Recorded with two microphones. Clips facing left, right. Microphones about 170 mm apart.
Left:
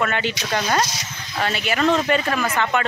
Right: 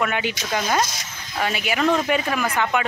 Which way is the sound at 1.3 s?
10° right (ahead or behind).